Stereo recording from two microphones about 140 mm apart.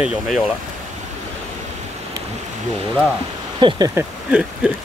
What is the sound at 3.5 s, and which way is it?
Speech, 35° right (ahead or behind).